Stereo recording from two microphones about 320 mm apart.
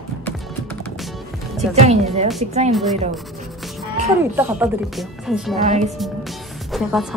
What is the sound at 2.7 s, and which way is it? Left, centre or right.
Speech, centre.